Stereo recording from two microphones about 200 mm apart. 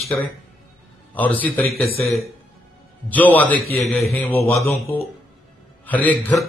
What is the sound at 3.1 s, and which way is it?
Speech, 10° left (ahead or behind).